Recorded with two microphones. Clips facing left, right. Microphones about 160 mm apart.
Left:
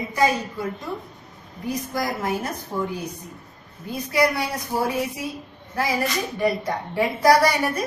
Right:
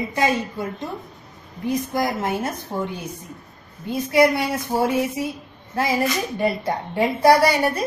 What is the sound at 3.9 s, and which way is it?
Speech, 25° right (ahead or behind).